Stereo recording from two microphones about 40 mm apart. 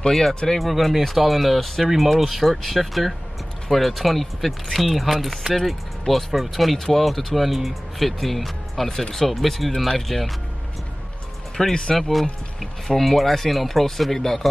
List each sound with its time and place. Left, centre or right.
0.1 s speech: centre
11.7 s speech: centre
12.0 s speech: centre